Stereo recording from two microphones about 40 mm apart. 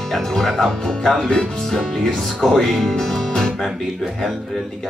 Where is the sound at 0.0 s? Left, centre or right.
Centre.